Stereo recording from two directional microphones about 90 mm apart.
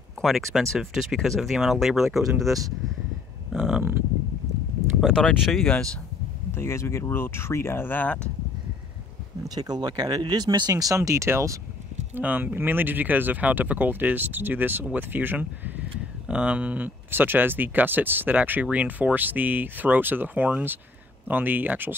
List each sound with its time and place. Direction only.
0.2 s speech: centre (ahead or behind)
5.0 s speech: 5° left (ahead or behind)
6.5 s speech: 30° left (ahead or behind)
9.6 s speech: 50° right (ahead or behind); by 11.6 s 35° right (ahead or behind)
12.2 s speech: 20° right (ahead or behind)